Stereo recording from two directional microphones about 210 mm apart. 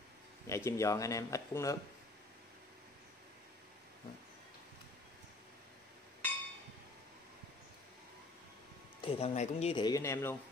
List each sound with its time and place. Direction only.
0.5 s speech: 15° left (ahead or behind)
9.0 s speech: 30° left (ahead or behind); by 10.3 s 15° left (ahead or behind)